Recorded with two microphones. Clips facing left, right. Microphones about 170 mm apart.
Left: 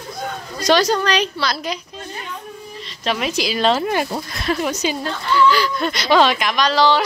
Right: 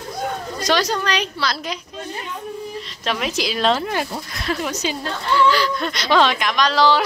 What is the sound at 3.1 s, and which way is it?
Speech, centre (ahead or behind).